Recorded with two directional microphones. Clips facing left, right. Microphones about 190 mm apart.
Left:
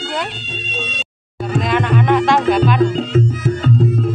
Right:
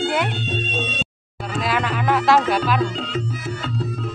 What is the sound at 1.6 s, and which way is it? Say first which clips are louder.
Speech: left 5 dB; 5° right (ahead or behind).